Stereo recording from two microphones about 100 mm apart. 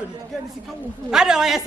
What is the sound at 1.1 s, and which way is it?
Speech, 5° right (ahead or behind).